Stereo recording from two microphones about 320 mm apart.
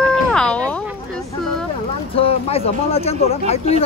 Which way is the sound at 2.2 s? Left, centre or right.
Centre.